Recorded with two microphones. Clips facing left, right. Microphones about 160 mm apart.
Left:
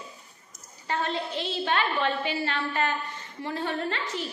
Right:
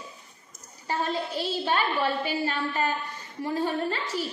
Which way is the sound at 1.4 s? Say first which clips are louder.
Even; 10° right (ahead or behind).